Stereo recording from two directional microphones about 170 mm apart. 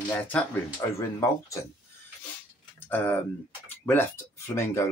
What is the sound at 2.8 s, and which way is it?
Speech, 10° left (ahead or behind).